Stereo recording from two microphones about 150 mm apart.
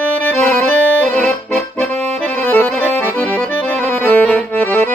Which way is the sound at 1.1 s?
10° left (ahead or behind).